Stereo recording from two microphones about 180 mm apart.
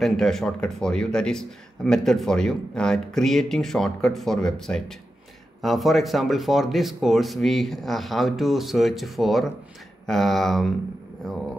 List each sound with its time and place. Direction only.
0.0 s speech: centre (ahead or behind)